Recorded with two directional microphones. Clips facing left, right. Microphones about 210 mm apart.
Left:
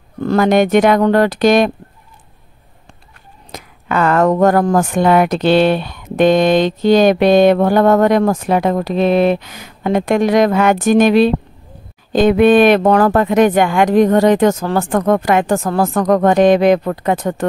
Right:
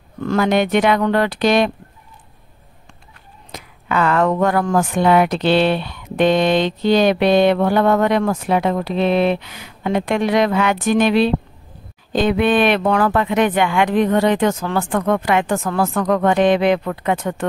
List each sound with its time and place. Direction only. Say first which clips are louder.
0.2 s speech: left 4 dB; 40° left (ahead or behind)
3.5 s speech: left 2 dB; 45° left (ahead or behind)